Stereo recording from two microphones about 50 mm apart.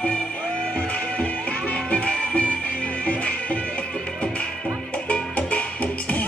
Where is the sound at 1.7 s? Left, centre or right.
Left.